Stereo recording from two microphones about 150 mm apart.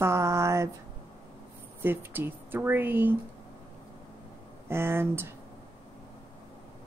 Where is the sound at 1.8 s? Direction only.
15° right (ahead or behind).